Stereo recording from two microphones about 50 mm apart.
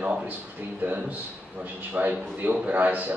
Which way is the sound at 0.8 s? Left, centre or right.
Right.